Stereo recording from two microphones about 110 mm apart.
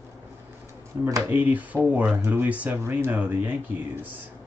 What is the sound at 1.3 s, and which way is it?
Speech, 15° right (ahead or behind).